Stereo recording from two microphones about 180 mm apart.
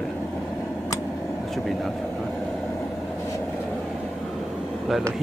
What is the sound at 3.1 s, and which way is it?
Vehicle, 15° left (ahead or behind).